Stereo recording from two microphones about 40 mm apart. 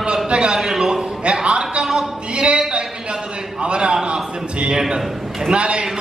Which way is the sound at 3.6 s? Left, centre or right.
Right.